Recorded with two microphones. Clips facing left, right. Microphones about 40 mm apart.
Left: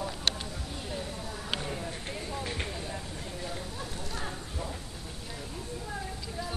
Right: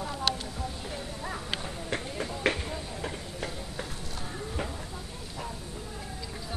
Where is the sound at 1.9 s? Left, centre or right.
Right.